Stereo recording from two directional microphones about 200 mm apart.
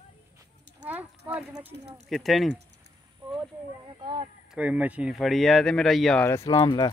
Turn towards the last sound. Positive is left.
turn(degrees=20)  # may be behind; listen again after turning